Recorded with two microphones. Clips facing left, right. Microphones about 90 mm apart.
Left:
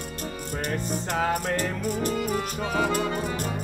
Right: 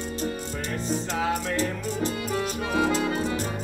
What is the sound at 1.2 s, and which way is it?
Music, 55° left (ahead or behind).